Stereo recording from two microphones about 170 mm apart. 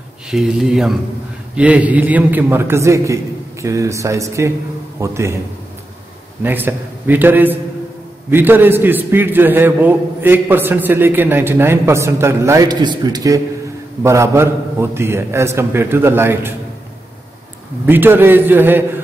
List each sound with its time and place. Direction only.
0.3 s a man's voice: 5° right (ahead or behind)
6.4 s a man's voice: 10° right (ahead or behind)
17.8 s a man's voice: 10° right (ahead or behind)